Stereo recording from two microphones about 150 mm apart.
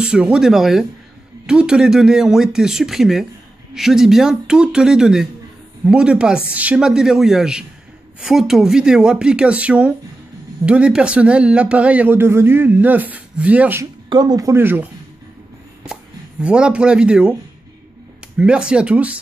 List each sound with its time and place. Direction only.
0.0 s speech: 5° right (ahead or behind)
14.0 s speech: 25° right (ahead or behind); by 17.4 s 5° right (ahead or behind)
18.4 s speech: 5° right (ahead or behind)